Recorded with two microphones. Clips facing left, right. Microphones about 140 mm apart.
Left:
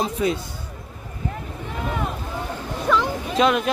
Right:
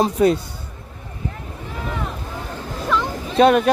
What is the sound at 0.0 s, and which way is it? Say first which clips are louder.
Speech: right 6 dB; 40° right (ahead or behind).